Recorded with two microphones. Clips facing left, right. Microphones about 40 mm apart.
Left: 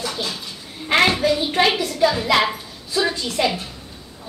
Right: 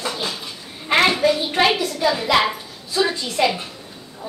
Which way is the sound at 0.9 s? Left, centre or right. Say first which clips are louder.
Even; centre.